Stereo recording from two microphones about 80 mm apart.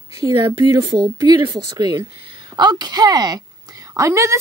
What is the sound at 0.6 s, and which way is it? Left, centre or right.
A woman's voice, right.